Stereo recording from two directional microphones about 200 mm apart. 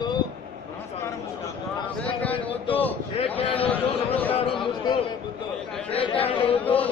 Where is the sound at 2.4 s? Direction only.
25° left (ahead or behind).